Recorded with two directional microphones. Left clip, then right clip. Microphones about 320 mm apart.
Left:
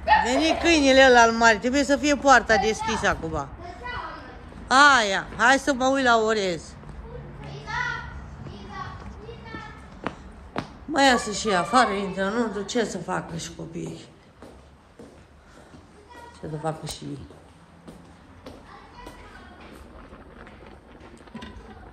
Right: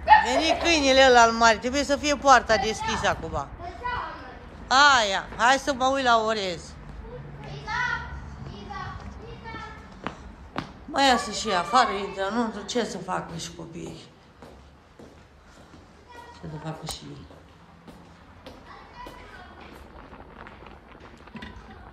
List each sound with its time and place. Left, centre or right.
0.0 s speech: centre
4.6 s speech: centre
10.9 s speech: centre
16.6 s speech: centre